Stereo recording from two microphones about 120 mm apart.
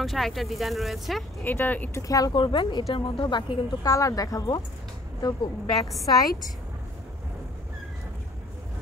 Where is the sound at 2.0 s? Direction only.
30° left (ahead or behind).